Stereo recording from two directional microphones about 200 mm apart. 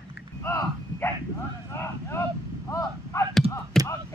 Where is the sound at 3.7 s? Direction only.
Centre (ahead or behind).